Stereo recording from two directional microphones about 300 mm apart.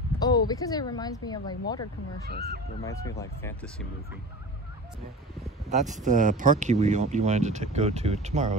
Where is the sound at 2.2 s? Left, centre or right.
Right.